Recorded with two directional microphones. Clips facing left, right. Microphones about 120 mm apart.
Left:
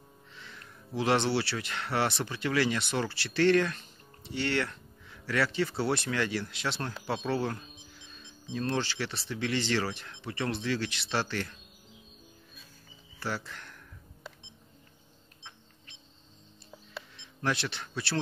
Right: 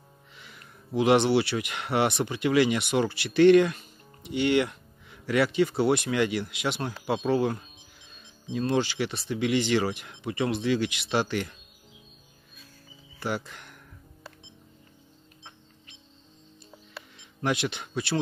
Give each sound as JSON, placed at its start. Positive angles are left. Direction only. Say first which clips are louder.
{"t": 0.3, "sound": "speech", "louder": "left 1 dB", "side_deg": -10}
{"t": 13.2, "sound": "speech", "louder": "right 4 dB", "side_deg": -15}
{"t": 17.4, "sound": "speech", "louder": "right 4 dB", "side_deg": -15}